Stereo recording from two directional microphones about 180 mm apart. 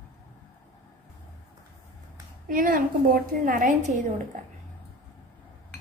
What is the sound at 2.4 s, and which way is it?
A woman's voice, 50° right (ahead or behind).